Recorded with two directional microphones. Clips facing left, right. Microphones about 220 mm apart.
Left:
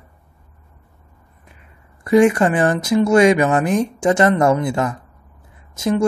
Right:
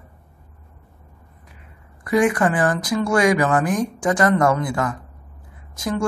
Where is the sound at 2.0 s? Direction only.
25° left (ahead or behind).